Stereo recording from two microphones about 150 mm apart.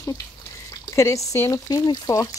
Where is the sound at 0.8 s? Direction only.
20° left (ahead or behind).